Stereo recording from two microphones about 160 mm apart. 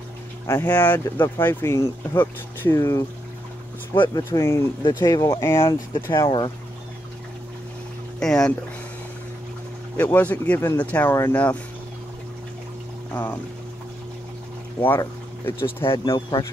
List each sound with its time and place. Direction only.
0.5 s speech: 10° left (ahead or behind)
4.2 s speech: 20° left (ahead or behind)
6.1 s speech: 25° left (ahead or behind)
8.2 s speech: 5° left (ahead or behind)
9.9 s speech: 10° left (ahead or behind)
13.1 s speech: 10° left (ahead or behind)
14.9 s speech: 15° left (ahead or behind)
15.8 s speech: 30° left (ahead or behind)